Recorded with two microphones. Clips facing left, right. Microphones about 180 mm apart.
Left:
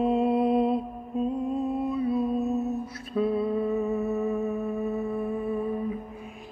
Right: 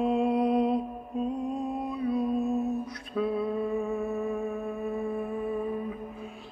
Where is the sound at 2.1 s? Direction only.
5° left (ahead or behind).